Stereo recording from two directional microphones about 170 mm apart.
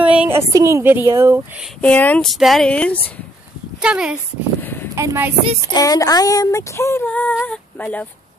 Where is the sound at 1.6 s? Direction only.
5° left (ahead or behind).